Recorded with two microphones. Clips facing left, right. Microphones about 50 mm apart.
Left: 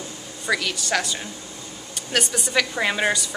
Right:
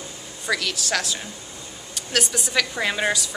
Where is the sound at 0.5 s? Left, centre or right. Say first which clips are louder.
Left 1 dB; centre.